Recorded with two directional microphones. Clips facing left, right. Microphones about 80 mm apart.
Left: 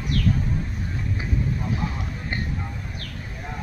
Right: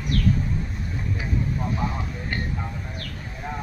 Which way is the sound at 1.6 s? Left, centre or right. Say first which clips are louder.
Right 1 dB; right.